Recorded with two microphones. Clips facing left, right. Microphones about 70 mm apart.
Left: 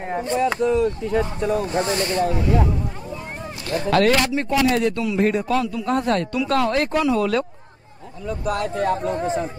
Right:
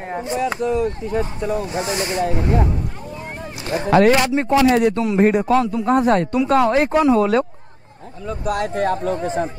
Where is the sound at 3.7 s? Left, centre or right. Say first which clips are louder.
Right 4 dB; right.